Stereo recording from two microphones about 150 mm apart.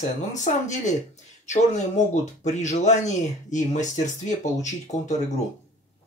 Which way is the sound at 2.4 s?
50° left (ahead or behind).